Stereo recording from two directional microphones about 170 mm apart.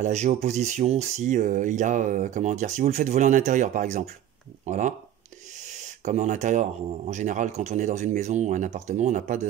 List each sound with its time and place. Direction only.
0.0 s speech: 40° right (ahead or behind)